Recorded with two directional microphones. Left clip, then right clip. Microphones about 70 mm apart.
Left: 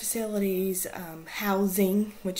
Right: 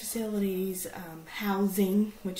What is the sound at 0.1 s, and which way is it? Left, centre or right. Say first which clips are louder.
Speech: left 3 dB; left.